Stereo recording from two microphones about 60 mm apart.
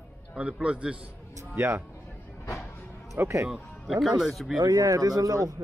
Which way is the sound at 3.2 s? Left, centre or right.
Right.